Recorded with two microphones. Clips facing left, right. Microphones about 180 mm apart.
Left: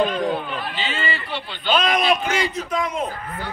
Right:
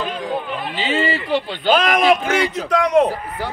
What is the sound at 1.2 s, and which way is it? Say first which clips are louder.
Speech: right 10 dB; 90° right.